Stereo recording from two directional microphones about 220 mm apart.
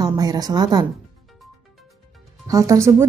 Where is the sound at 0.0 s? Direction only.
15° right (ahead or behind).